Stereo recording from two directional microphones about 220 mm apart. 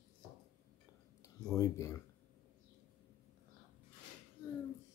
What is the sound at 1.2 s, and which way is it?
Speech, 15° left (ahead or behind).